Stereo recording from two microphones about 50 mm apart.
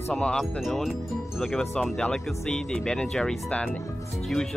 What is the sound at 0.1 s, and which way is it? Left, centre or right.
Speech, centre.